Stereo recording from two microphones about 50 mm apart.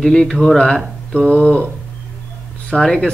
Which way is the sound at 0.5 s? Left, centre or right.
Centre.